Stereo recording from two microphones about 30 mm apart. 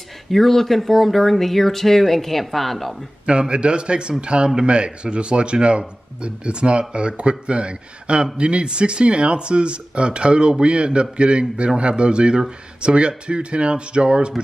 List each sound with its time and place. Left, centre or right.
0.3 s speech: centre
3.3 s a man's voice: right